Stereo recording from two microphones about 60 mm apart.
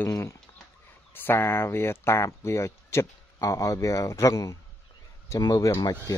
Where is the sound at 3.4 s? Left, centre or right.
Left.